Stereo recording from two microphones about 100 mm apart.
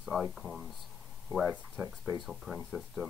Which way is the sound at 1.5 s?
10° right (ahead or behind).